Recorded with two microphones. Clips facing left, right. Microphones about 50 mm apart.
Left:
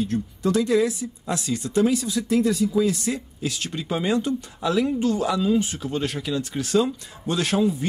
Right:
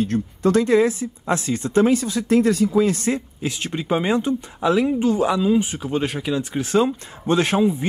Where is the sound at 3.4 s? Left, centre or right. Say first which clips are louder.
Right 3 dB; right.